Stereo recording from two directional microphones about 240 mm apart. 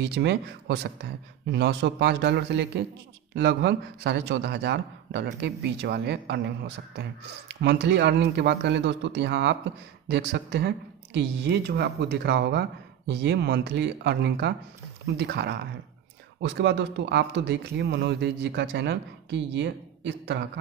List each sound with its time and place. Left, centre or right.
0.0 s speech: right